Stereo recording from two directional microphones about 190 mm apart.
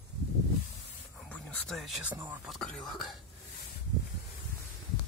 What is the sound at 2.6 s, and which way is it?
Speech, 5° left (ahead or behind).